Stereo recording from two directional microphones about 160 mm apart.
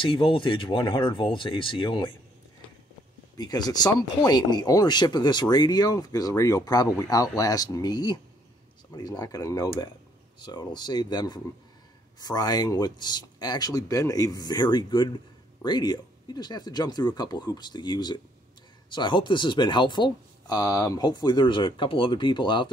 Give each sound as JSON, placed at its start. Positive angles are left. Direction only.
{"t": 0.0, "sound": "speech", "side_deg": 35}
{"t": 3.3, "sound": "speech", "side_deg": 25}